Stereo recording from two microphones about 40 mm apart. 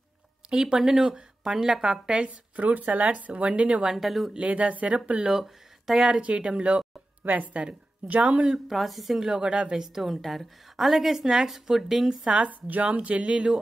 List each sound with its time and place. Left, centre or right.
0.5 s a woman's voice: centre
2.2 s speech: right
3.8 s a woman's voice: centre
4.4 s speech: right
5.3 s speech: centre
6.0 s a woman's voice: right
7.2 s speech: right
8.6 s a woman's voice: centre
9.2 s a woman's voice: right
10.0 s a woman's voice: centre
12.3 s speech: right